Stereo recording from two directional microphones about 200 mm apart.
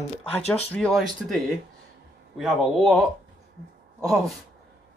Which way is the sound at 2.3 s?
Centre (ahead or behind).